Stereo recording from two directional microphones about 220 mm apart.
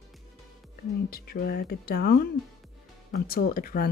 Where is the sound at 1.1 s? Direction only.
45° left (ahead or behind).